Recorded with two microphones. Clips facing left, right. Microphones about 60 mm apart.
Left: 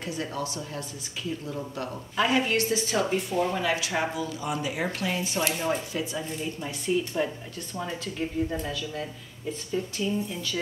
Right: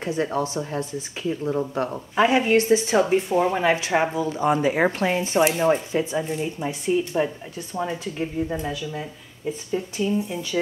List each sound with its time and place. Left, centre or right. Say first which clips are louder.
0.0 s a woman's voice: right 8 dB; right